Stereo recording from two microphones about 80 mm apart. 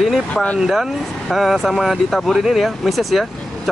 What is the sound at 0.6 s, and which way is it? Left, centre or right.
Speech, centre.